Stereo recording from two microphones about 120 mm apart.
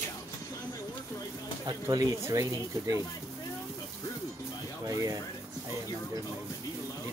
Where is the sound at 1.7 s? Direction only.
25° right (ahead or behind).